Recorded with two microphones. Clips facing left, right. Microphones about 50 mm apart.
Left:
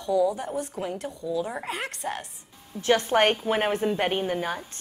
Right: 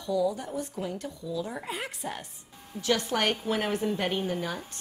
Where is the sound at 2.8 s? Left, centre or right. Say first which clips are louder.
Left 6 dB; left.